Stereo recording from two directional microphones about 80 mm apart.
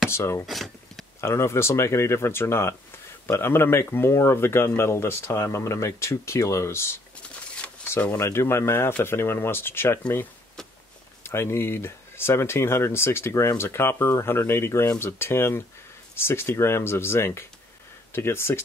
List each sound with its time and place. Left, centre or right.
0.1 s speech: left
0.5 s speech: centre
1.2 s speech: left
8.2 s speech: left
11.2 s speech: left